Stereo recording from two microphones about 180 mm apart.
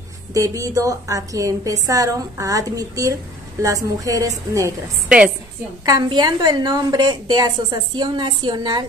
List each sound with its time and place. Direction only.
0.3 s a woman's voice: 15° right (ahead or behind)
5.9 s a woman's voice: 25° right (ahead or behind)